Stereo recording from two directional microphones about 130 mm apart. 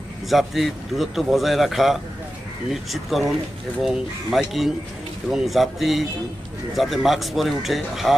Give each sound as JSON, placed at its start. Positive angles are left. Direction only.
{"t": 0.3, "sound": "speech", "side_deg": 0}